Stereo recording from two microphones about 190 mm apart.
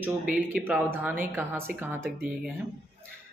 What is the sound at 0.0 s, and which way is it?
Speech, 5° right (ahead or behind).